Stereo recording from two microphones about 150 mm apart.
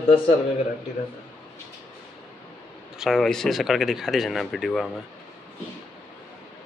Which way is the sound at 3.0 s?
Centre (ahead or behind).